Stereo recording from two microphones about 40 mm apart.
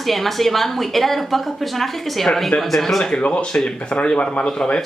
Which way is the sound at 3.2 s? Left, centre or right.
Left.